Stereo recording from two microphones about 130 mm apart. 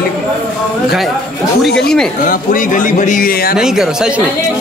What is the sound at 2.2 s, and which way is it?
Speech, 90° left.